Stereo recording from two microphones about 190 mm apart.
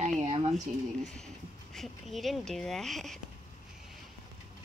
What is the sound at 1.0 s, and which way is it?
Speech, 5° left (ahead or behind).